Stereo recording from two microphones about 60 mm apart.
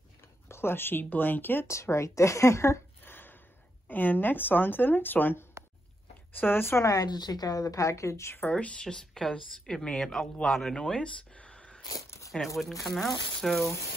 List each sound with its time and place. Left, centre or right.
0.5 s speech: left
1.7 s speech: left
3.0 s a sound: left
3.8 s speech: left
6.8 s a woman's voice: left
8.4 s speech: left
8.8 s speech: centre
12.3 s speech: centre